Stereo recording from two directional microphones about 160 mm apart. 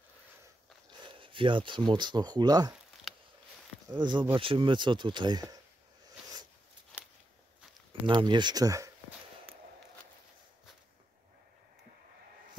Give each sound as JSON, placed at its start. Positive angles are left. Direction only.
{"t": 1.0, "sound": "speech", "side_deg": -30}
{"t": 3.9, "sound": "speech", "side_deg": -30}
{"t": 6.9, "sound": "a sound", "side_deg": 0}
{"t": 8.1, "sound": "speech", "side_deg": -30}